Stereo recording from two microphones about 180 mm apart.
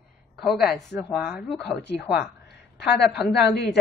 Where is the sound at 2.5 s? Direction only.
65° left (ahead or behind).